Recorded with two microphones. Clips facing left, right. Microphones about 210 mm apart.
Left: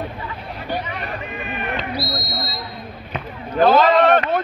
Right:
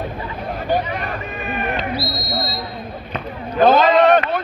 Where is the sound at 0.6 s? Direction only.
45° right (ahead or behind).